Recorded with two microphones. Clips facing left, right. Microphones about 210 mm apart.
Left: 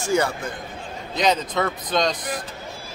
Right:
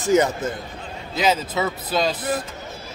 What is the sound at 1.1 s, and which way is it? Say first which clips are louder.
A man's voice: even; 5° right (ahead or behind).